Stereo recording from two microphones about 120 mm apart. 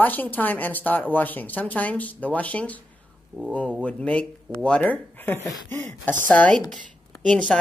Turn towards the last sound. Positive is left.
turn(degrees=10)  # may be behind; listen again after turning